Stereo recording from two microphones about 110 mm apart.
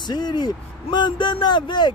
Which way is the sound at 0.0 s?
40° left (ahead or behind).